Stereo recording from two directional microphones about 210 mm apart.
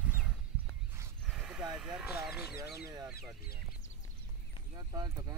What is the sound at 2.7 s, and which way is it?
Speech, 15° right (ahead or behind).